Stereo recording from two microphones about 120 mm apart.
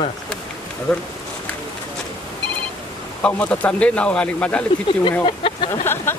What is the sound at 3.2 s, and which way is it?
Speech, 10° left (ahead or behind).